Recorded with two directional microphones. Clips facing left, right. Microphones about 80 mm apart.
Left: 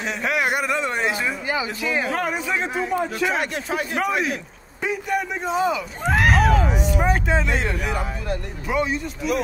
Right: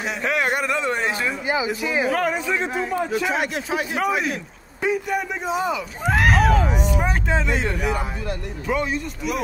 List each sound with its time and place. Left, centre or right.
0.0 s speech: centre
1.5 s speech: centre
2.2 s speech: centre
3.1 s speech: centre